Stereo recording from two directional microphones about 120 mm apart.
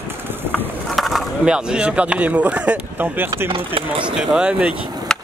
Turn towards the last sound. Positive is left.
turn(degrees=5)  # may be behind; listen again after turning